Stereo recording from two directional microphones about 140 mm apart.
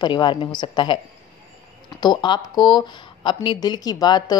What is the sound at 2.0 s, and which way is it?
A woman's voice, 30° left (ahead or behind).